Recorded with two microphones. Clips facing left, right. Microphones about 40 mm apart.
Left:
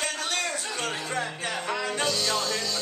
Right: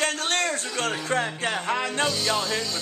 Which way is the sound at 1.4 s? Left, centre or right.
Right.